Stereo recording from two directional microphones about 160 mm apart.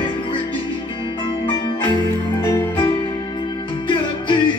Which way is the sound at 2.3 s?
25° left (ahead or behind).